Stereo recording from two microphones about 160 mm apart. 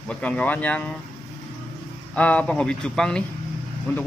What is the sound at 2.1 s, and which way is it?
Speech, 10° left (ahead or behind).